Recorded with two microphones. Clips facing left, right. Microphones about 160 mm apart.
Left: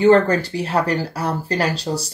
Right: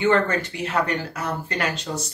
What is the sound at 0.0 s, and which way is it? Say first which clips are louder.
Speech: left 7 dB; 35° left (ahead or behind).